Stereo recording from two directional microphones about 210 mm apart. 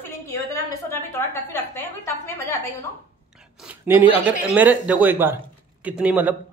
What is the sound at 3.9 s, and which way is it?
A man's voice, 10° right (ahead or behind).